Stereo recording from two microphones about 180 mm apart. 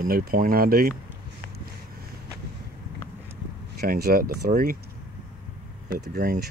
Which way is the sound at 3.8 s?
60° right (ahead or behind).